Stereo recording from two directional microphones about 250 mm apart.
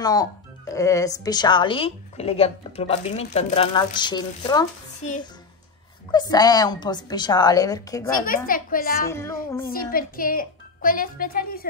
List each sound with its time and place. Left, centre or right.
0.0 s speech: centre
5.0 s a child's voice: left
6.1 s speech: centre
8.5 s a woman's voice: left